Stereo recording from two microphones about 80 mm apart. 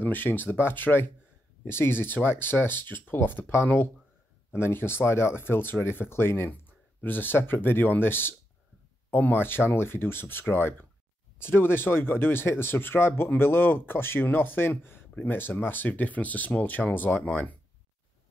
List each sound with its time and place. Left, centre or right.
0.0 s speech: left